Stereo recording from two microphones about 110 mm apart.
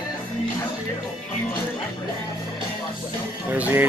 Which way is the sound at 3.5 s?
15° right (ahead or behind).